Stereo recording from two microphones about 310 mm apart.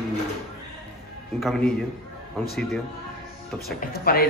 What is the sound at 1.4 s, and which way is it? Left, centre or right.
Speech, centre.